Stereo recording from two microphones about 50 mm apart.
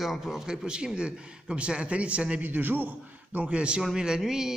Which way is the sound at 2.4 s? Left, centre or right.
Right.